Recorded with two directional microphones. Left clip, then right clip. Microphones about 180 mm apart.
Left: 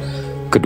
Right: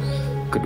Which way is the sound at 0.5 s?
40° left (ahead or behind).